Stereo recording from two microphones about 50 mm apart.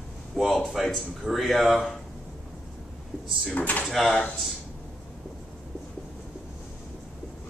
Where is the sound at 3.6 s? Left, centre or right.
Left.